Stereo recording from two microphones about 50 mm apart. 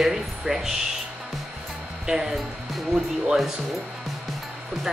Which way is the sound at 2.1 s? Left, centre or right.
Centre.